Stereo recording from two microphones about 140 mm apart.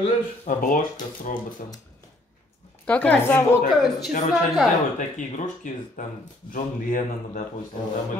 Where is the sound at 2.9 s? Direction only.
10° left (ahead or behind).